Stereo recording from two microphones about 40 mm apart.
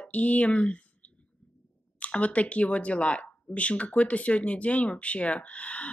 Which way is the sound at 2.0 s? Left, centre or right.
Left.